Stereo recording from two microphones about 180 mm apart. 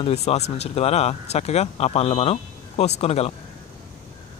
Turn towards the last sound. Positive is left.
turn(degrees=35)  # may be behind; listen again after turning